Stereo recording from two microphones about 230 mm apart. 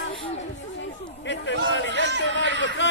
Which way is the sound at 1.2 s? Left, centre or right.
Left.